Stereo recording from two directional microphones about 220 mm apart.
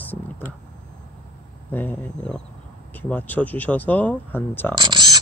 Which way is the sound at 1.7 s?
10° left (ahead or behind).